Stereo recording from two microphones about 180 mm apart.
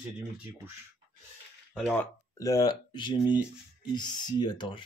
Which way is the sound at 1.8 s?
5° left (ahead or behind).